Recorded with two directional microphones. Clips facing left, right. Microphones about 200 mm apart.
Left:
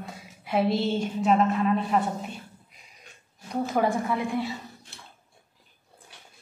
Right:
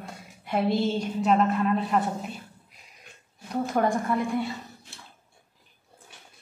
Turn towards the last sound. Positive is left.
turn(degrees=0)  # may be behind; listen again after turning